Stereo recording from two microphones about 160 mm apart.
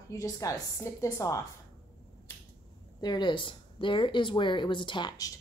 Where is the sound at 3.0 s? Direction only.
25° left (ahead or behind).